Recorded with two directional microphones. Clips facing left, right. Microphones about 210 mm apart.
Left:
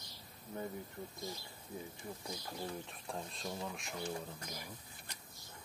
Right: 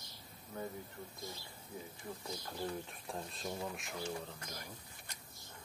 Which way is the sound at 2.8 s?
Centre (ahead or behind).